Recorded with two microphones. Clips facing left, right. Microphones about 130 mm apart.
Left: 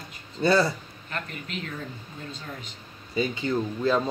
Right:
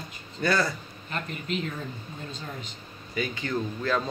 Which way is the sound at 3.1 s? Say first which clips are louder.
Left 4 dB; 25° left (ahead or behind).